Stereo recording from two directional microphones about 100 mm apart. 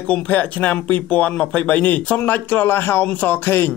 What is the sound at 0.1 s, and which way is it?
Speech, 15° left (ahead or behind).